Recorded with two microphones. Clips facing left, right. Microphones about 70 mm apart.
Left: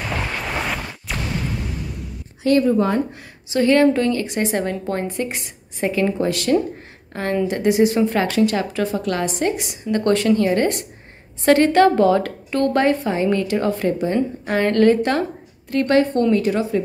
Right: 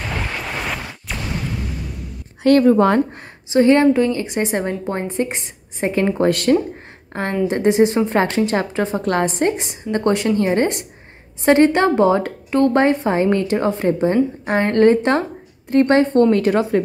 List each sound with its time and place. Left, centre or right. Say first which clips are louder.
0.4 s a sound: left 1 dB; centre
2.4 s speech: right 4 dB; right
2.7 s speech: right 4 dB; right
3.5 s a woman's voice: right 2 dB; right
6.1 s speech: right 3 dB; right
7.1 s a woman's voice: right 1 dB; right